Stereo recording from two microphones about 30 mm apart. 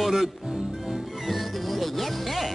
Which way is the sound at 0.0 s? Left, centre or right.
Centre.